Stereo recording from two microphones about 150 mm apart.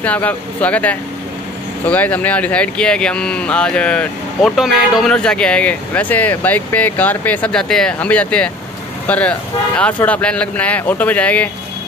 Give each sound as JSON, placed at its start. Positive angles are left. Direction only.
{"t": 0.0, "sound": "speech", "side_deg": 10}